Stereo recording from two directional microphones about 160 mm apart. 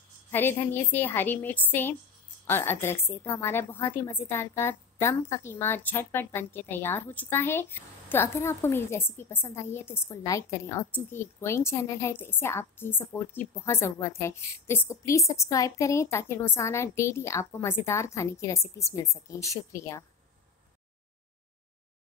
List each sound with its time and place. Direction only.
0.3 s a woman's voice: 15° left (ahead or behind)